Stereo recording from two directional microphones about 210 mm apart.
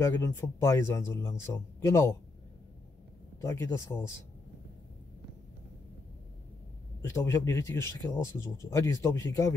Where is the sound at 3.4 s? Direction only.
15° left (ahead or behind).